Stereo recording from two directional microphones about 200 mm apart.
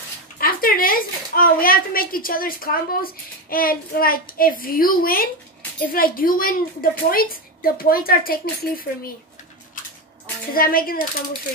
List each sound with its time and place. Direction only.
0.4 s a woman's voice: 45° left (ahead or behind)
10.5 s a woman's voice: 45° left (ahead or behind)